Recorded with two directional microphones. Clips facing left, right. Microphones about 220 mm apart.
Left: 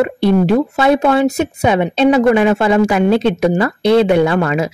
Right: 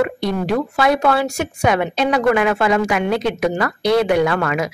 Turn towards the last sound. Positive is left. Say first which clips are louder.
# left 4 dB
turn(degrees=25)  # may be behind; listen again after turning